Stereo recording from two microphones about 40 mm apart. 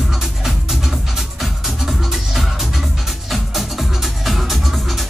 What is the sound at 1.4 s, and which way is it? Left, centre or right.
Music, centre.